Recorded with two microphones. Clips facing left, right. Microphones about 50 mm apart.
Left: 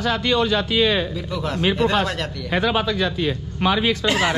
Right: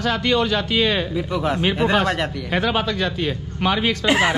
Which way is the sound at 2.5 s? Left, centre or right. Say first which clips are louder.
Left 1 dB; right.